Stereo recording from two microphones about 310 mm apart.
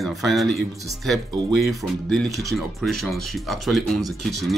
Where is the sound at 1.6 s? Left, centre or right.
Centre.